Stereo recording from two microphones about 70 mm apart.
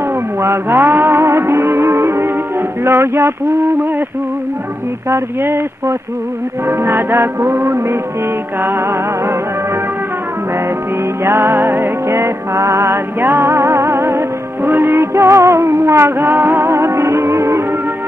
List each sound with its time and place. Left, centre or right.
0.4 s music: right
5.1 s music: right
11.2 s music: right